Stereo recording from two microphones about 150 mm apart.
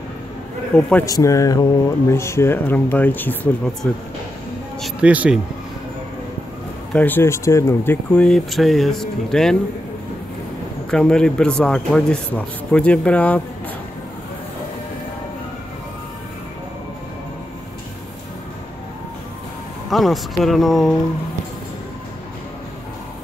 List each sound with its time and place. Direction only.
0.7 s speech: 10° left (ahead or behind)
1.0 s speech: 20° left (ahead or behind)
4.8 s speech: 10° right (ahead or behind)
6.9 s speech: 10° left (ahead or behind)
10.9 s speech: 5° left (ahead or behind)
19.9 s speech: centre (ahead or behind)